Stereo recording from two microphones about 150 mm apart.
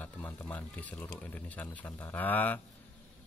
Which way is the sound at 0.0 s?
10° left (ahead or behind).